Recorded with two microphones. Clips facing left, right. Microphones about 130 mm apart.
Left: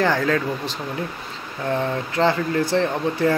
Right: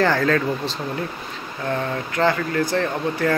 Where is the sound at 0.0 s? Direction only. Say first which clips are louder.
Right 1 dB; 15° left (ahead or behind).